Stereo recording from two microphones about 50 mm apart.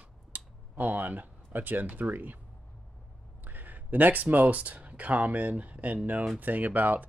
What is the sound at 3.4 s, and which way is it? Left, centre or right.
Speech, right.